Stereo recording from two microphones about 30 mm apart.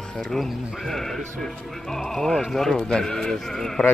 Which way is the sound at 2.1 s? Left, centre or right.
Centre.